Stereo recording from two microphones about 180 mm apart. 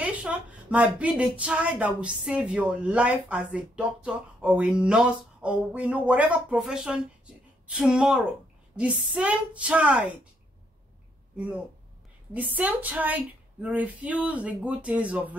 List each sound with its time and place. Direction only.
0.0 s a woman's voice: 10° right (ahead or behind)
11.3 s speech: 5° right (ahead or behind)